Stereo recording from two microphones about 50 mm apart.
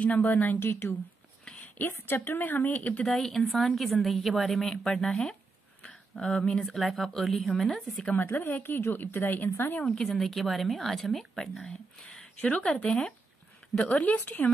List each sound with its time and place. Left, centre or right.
0.0 s a woman's voice: left
0.6 s a woman's voice: left
3.1 s a woman's voice: centre
7.9 s speech: left
8.2 s speech: left
9.8 s a woman's voice: centre
12.0 s a sound: centre
12.4 s speech: left
12.8 s speech: centre
13.7 s speech: left